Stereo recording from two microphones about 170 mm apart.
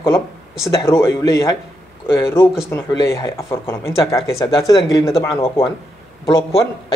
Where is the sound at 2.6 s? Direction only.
15° left (ahead or behind).